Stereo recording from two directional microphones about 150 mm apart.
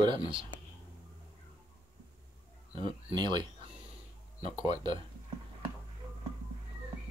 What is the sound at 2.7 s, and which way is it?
Speech, 35° right (ahead or behind).